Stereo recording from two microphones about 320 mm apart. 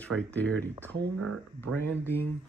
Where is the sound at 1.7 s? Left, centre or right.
Centre.